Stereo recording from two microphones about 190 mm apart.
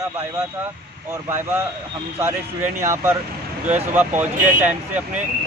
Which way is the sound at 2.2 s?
15° right (ahead or behind).